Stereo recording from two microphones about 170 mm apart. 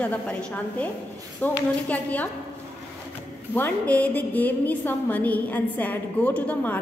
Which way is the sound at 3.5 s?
10° left (ahead or behind).